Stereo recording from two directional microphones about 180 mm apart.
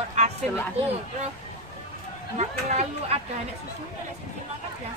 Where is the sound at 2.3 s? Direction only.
35° right (ahead or behind).